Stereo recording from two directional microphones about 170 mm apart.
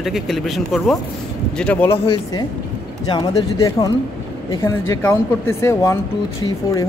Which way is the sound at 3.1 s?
25° left (ahead or behind).